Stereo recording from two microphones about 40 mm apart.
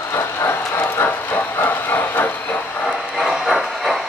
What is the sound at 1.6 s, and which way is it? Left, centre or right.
Train, left.